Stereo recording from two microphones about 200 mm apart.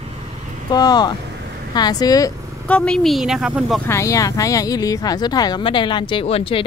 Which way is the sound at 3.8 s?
15° left (ahead or behind).